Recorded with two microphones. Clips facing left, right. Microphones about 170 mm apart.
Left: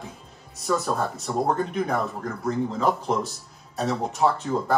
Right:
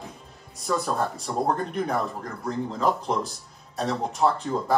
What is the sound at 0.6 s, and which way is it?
Speech, centre (ahead or behind).